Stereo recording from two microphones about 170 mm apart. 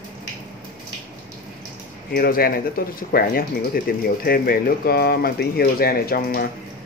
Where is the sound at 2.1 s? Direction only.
60° left (ahead or behind).